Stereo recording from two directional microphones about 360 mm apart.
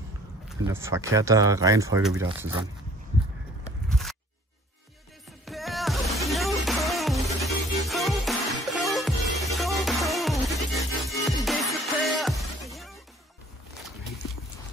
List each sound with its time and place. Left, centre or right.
0.5 s speech: centre
3.9 s a sound: centre
5.4 s music: centre